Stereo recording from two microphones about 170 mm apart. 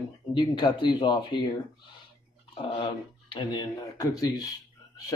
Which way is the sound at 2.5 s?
30° left (ahead or behind).